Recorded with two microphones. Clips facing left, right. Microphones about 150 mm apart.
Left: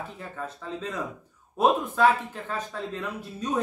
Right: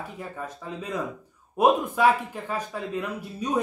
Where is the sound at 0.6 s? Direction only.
10° right (ahead or behind).